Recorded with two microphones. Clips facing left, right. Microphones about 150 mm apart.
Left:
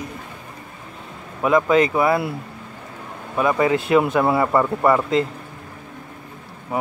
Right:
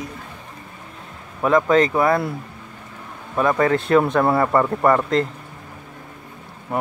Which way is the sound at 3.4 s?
10° left (ahead or behind).